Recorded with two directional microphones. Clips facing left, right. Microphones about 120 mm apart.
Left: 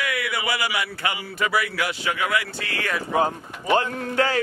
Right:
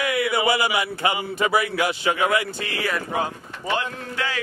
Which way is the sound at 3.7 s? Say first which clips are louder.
Left 6 dB; 40° left (ahead or behind).